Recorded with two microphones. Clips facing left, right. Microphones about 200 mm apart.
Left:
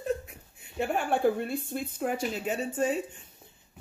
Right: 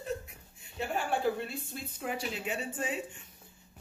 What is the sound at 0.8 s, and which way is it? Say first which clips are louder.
A woman's voice: left 5 dB; 55° left (ahead or behind).